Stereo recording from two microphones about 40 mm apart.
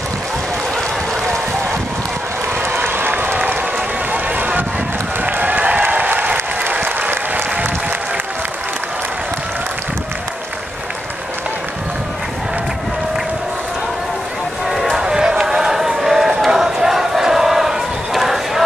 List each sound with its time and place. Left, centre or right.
2.6 s crowd: right
4.1 s run: right
6.6 s applause: right
14.7 s run: centre
15.0 s a sound: centre